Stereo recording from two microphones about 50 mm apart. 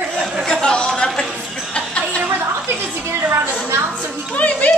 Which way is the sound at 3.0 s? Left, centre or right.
Right.